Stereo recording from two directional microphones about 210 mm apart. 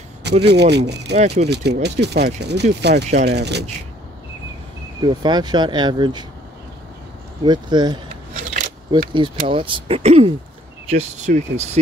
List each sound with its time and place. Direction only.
0.5 s speech: 55° right (ahead or behind)
1.1 s speech: 30° right (ahead or behind)
1.5 s speech: 55° right (ahead or behind)
5.0 s speech: 20° right (ahead or behind)
7.4 s speech: 20° right (ahead or behind)
8.4 s a sound: 35° right (ahead or behind)
8.9 s speech: 25° right (ahead or behind)